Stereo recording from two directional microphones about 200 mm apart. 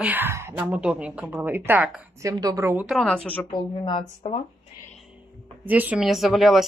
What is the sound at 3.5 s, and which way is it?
Speech, 25° left (ahead or behind).